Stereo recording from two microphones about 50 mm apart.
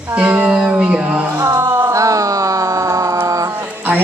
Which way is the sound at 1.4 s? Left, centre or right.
Right.